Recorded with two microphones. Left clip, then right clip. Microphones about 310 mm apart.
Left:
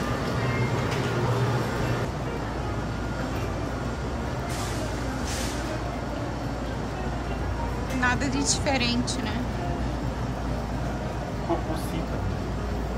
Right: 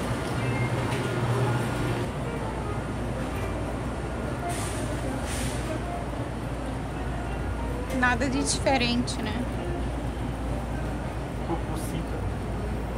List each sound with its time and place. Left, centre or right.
8.0 s a woman's voice: centre